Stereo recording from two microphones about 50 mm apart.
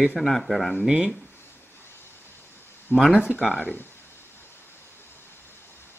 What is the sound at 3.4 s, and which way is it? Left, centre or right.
Speech, left.